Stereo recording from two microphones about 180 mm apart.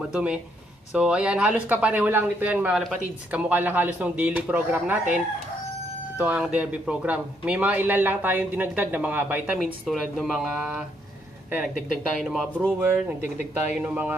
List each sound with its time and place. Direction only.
0.0 s speech: 5° right (ahead or behind)
11.6 s speech: 45° left (ahead or behind)
12.2 s speech: centre (ahead or behind)
13.7 s speech: 10° right (ahead or behind)